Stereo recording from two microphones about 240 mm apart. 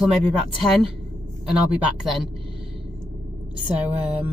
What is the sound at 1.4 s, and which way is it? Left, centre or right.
Speech, centre.